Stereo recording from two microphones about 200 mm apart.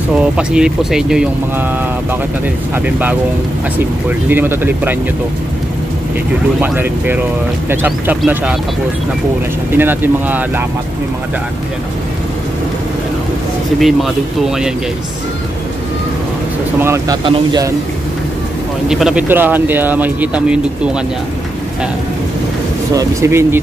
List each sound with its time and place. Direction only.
0.2 s speech: 5° right (ahead or behind)
4.3 s speech: 10° right (ahead or behind)
6.6 s speech: 10° right (ahead or behind)
9.7 s speech: 10° right (ahead or behind)
13.7 s speech: centre (ahead or behind)
16.8 s a man's voice: 15° right (ahead or behind)
18.9 s speech: 5° right (ahead or behind)
22.9 s speech: 15° right (ahead or behind)